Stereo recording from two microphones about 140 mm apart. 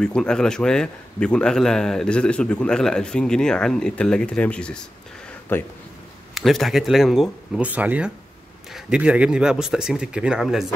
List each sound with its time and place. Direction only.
0.0 s a man's voice: 5° left (ahead or behind)
6.3 s a man's voice: centre (ahead or behind)